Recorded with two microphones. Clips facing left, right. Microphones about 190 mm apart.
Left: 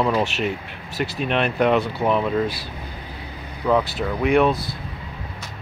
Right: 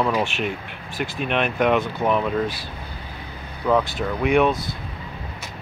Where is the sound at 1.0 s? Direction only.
40° left (ahead or behind).